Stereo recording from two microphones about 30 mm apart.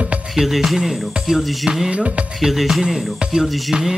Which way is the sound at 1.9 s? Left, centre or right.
Right.